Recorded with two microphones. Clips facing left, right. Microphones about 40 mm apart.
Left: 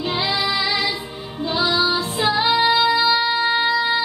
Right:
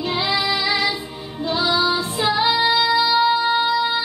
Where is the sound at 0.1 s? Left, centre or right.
Left.